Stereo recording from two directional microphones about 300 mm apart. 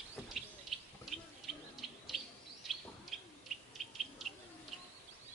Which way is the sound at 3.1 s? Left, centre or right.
Centre.